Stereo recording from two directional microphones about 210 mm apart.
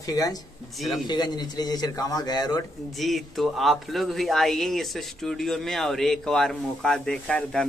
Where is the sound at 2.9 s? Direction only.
Centre (ahead or behind).